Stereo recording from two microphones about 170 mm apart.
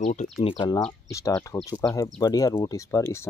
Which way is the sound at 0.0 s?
45° left (ahead or behind).